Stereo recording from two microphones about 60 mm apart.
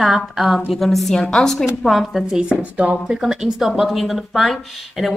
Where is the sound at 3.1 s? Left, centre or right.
Centre.